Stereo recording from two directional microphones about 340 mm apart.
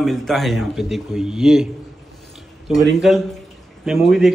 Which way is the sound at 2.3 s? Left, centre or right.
Centre.